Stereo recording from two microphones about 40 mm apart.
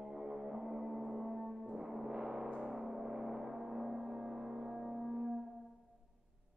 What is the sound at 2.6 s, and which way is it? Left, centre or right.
Gong, centre.